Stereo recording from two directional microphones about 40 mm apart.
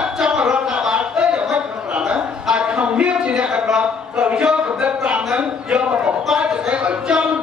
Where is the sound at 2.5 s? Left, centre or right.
Right.